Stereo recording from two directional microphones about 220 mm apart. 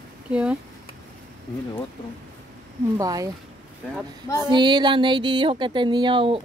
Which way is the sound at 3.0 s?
15° right (ahead or behind).